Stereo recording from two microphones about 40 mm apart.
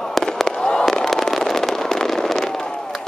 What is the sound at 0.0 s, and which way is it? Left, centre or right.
Fireworks, centre.